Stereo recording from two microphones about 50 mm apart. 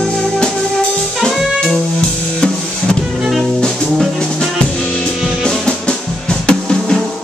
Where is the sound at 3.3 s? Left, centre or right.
Centre.